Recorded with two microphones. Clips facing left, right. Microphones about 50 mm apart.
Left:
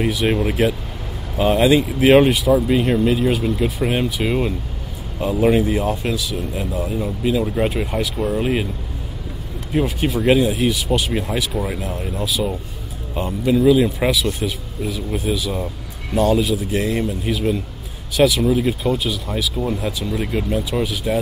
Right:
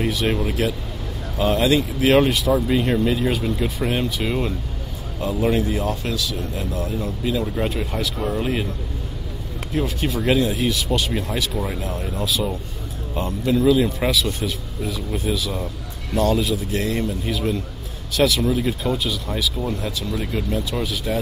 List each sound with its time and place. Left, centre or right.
0.0 s speech: centre
7.6 s speech: left
9.7 s speech: centre